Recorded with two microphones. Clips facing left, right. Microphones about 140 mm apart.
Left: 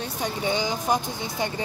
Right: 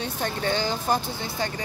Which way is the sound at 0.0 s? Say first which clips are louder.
Even; 10° left (ahead or behind).